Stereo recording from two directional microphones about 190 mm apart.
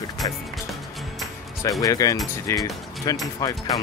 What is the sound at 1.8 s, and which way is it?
Speech, 20° left (ahead or behind).